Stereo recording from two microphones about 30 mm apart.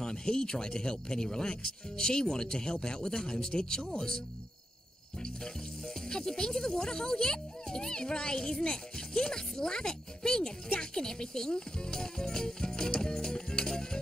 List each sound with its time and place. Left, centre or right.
0.0 s speech: left
6.0 s speech: left